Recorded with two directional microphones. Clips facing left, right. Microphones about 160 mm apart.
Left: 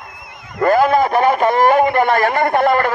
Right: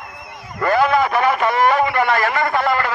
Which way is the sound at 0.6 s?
45° left (ahead or behind).